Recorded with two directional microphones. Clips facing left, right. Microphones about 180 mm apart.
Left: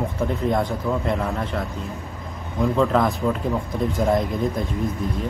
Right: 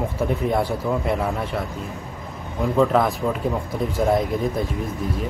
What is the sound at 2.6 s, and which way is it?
Speech, 5° right (ahead or behind).